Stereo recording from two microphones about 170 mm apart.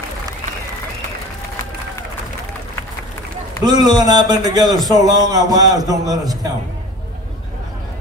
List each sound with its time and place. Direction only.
3.6 s a man's voice: 25° right (ahead or behind)